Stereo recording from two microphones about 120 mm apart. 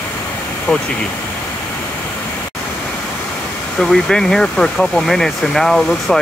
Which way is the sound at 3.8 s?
5° left (ahead or behind).